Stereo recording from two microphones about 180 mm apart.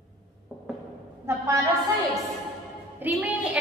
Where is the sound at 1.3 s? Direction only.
15° right (ahead or behind).